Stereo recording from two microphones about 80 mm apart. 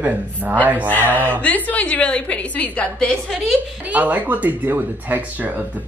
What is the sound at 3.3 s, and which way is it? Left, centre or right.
Speech, centre.